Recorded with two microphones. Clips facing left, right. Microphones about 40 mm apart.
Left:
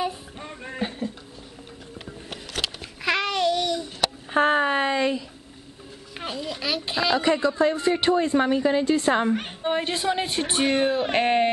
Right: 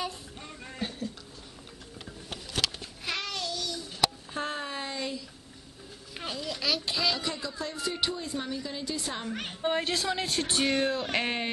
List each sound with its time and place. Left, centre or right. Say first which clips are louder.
0.0 s music: left 7 dB; left
3.0 s babbling: left 11 dB; left
6.1 s speech: left 4 dB; centre
7.2 s a woman's voice: left 14 dB; left
9.7 s speech: left 5 dB; centre; by 11.5 s left